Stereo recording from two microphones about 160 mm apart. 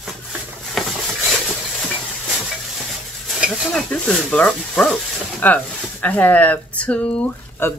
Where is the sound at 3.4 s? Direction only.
5° right (ahead or behind).